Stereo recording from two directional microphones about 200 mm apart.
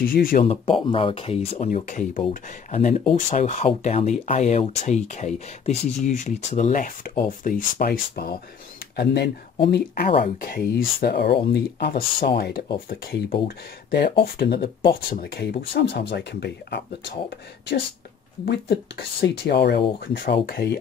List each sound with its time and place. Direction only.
0.0 s speech: 45° left (ahead or behind)
0.5 s speech: 25° left (ahead or behind); by 20.7 s 50° left (ahead or behind)